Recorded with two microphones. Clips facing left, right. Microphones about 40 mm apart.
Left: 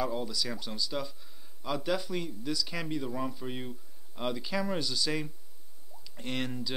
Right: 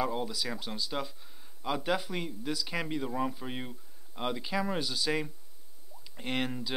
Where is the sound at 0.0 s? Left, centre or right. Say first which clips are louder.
Even; centre.